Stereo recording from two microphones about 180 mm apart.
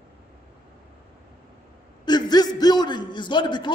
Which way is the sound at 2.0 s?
25° left (ahead or behind).